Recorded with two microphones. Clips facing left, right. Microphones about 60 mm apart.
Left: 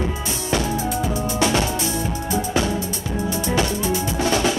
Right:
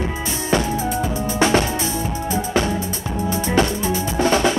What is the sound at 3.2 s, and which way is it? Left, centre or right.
Music, right.